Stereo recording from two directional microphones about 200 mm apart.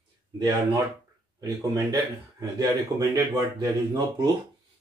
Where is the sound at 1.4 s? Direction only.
20° right (ahead or behind).